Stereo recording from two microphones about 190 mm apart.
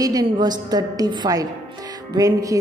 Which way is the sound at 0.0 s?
20° right (ahead or behind).